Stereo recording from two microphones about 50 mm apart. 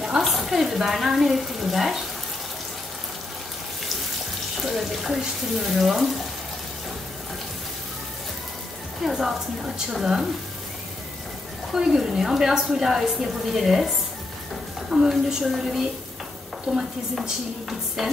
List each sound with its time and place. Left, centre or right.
0.2 s speech: centre
4.6 s speech: centre
9.0 s a woman's voice: centre
11.7 s a woman's voice: centre
15.0 s speech: centre
17.2 s speech: centre